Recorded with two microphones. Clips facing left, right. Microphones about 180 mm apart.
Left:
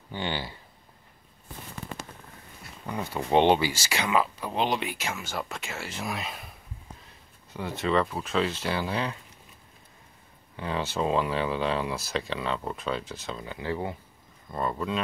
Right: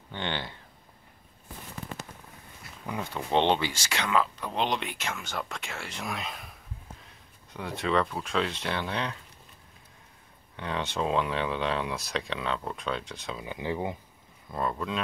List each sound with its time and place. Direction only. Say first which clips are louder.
0.1 s speech: left 2 dB; 5° left (ahead or behind)
2.8 s speech: left 2 dB; 5° left (ahead or behind)
7.5 s speech: left 2 dB; centre (ahead or behind)
10.5 s speech: left 2 dB; 5° left (ahead or behind)
13.4 s speech: right 1 dB; 15° right (ahead or behind)
14.5 s speech: left 1 dB; centre (ahead or behind)